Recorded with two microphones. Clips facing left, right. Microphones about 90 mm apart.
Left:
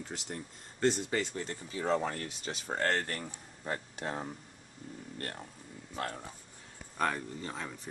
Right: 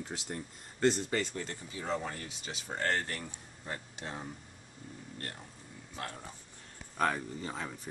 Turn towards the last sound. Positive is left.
turn(degrees=-5)  # may be behind; listen again after turning